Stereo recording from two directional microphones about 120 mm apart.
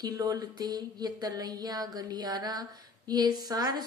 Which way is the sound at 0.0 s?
35° right (ahead or behind).